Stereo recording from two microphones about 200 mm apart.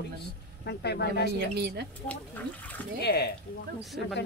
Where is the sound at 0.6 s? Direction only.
55° left (ahead or behind).